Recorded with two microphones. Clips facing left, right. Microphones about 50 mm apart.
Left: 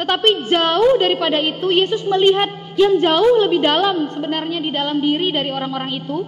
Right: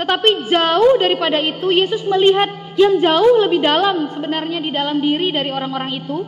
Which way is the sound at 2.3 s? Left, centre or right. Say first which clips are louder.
Right 2 dB; right.